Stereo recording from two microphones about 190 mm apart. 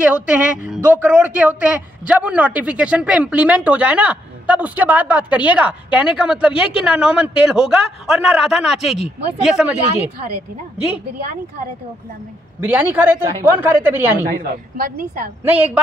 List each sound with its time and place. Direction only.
0.0 s a man's voice: 5° right (ahead or behind)
12.5 s a man's voice: 10° right (ahead or behind)
14.2 s a woman's voice: 50° right (ahead or behind)
15.4 s a man's voice: 10° right (ahead or behind)